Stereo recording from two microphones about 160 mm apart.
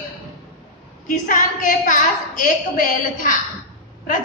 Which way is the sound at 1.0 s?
55° left (ahead or behind).